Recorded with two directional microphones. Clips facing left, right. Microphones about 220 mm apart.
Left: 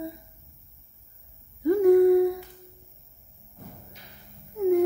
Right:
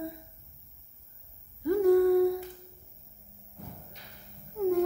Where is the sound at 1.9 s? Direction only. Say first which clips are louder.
Left 5 dB; 15° left (ahead or behind).